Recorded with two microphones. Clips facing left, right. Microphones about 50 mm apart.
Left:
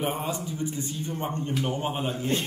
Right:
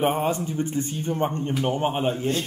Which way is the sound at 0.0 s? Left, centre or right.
Right.